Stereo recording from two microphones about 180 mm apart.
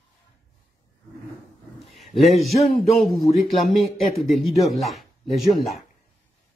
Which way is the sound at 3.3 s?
Centre (ahead or behind).